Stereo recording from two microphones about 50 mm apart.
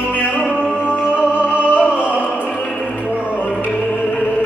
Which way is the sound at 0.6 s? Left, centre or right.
Right.